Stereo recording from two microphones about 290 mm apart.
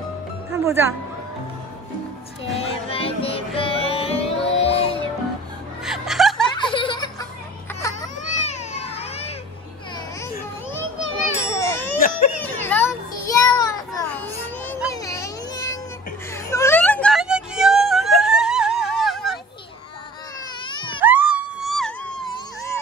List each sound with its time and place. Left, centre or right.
0.5 s music: centre
2.5 s music: centre
5.9 s music: centre
6.5 s chuckle: centre
7.8 s baby cry: centre
8.2 s a sound: left
11.5 s ding: centre
12.5 s a sound: centre
14.9 s baby cry: centre
16.4 s music: centre
20.6 s a sound: centre
21.0 s a sound: centre